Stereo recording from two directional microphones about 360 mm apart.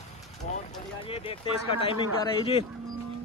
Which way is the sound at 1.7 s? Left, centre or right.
Centre.